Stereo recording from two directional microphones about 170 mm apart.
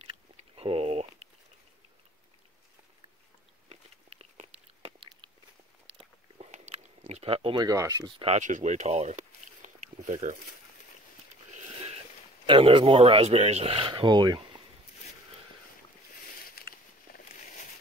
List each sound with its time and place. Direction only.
0.6 s a sound: 35° right (ahead or behind)
3.6 s biting: 35° right (ahead or behind)
5.9 s chewing: 40° right (ahead or behind); by 8.1 s 20° right (ahead or behind)
8.2 s speech: 40° right (ahead or behind)
11.5 s zipper: 40° right (ahead or behind)
12.4 s speech: 30° right (ahead or behind)
17.1 s a sound: 55° left (ahead or behind)